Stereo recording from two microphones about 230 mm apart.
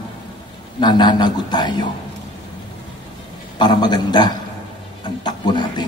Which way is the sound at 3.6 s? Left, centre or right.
Centre.